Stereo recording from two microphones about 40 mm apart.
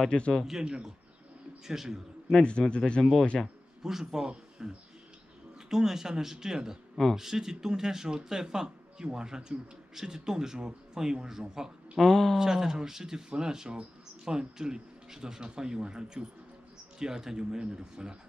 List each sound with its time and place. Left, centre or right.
0.1 s speech: centre
0.5 s speech: centre
2.2 s a man's voice: left
3.0 s speech: centre
3.8 s speech: centre
12.0 s speech: centre
12.4 s speech: centre